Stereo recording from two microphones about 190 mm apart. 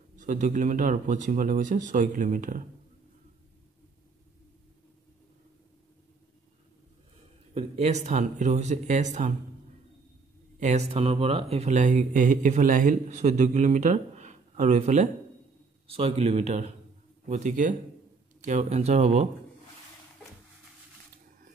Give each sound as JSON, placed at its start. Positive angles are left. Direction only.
{"t": 0.2, "sound": "speech", "side_deg": -40}
{"t": 7.5, "sound": "speech", "side_deg": -35}
{"t": 10.6, "sound": "speech", "side_deg": -35}